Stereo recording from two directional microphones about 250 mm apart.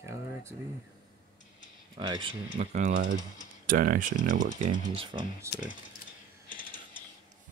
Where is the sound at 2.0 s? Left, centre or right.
Centre.